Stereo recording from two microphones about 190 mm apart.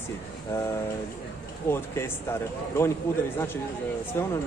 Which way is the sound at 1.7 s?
15° left (ahead or behind).